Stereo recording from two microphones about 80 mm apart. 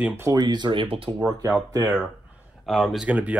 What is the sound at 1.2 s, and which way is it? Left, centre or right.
Speech, right.